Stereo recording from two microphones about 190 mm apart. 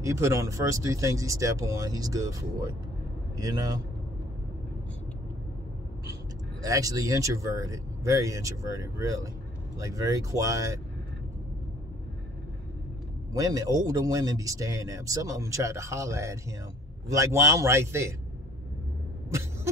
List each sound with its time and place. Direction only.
0.0 s a man's voice: 15° right (ahead or behind)
6.6 s a man's voice: 20° right (ahead or behind)
13.3 s a man's voice: 20° right (ahead or behind)